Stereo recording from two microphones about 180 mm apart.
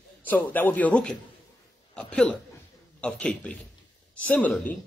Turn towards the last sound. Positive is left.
turn(degrees=10)  # may be behind; listen again after turning